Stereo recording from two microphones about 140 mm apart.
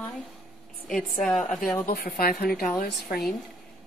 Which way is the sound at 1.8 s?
90° left.